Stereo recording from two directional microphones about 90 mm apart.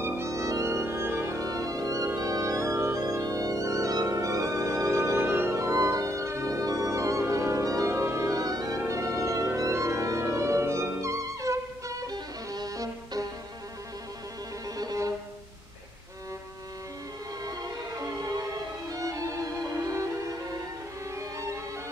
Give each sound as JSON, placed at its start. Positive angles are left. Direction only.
{"t": 0.0, "sound": "music", "side_deg": -30}
{"t": 14.8, "sound": "music", "side_deg": -45}
{"t": 17.5, "sound": "music", "side_deg": -40}